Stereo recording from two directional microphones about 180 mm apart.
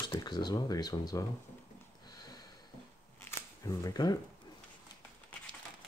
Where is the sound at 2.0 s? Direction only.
20° left (ahead or behind).